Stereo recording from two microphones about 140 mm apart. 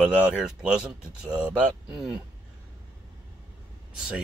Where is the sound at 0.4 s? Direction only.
5° right (ahead or behind).